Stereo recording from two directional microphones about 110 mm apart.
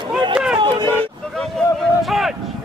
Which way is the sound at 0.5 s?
45° right (ahead or behind).